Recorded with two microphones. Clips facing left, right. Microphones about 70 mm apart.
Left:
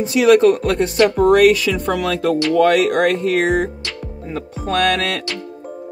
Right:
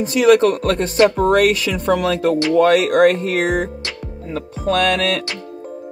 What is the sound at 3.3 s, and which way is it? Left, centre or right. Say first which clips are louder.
Speech: left 2 dB; left.